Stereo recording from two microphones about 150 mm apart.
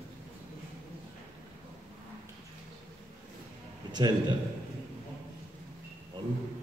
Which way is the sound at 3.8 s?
30° right (ahead or behind).